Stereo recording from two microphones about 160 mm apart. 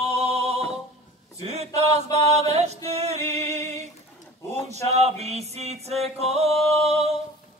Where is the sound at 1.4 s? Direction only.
40° right (ahead or behind).